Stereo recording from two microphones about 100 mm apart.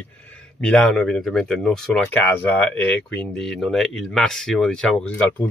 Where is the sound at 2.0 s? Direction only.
15° left (ahead or behind).